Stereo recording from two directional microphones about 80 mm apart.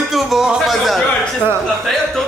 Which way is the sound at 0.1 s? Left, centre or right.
Centre.